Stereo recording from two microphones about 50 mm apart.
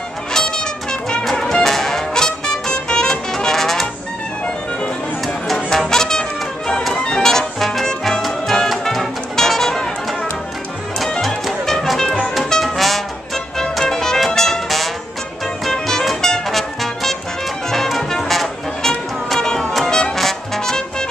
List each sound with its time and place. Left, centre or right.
0.3 s music: centre
5.7 s music: centre
11.1 s music: centre